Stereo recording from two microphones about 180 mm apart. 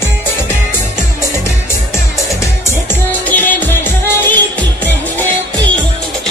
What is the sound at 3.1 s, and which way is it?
Music, 10° left (ahead or behind).